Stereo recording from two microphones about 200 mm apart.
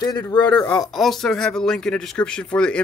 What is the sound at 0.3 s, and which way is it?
Speech, 20° left (ahead or behind).